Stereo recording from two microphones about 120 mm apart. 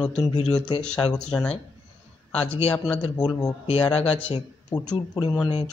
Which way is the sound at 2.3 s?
55° left (ahead or behind).